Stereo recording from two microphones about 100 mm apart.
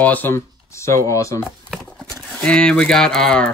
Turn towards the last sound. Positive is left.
turn(degrees=10)  # may be behind; listen again after turning